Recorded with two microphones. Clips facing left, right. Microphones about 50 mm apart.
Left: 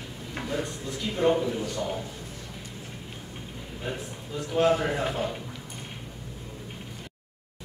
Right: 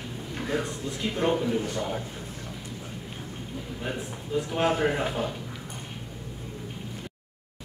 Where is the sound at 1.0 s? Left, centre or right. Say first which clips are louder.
Left 2 dB; right.